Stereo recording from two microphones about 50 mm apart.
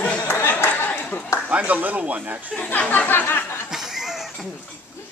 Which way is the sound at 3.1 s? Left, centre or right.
Left.